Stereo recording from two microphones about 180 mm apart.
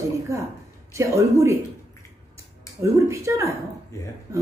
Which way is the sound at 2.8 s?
15° right (ahead or behind).